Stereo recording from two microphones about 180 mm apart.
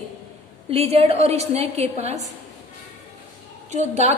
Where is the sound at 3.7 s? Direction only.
40° right (ahead or behind).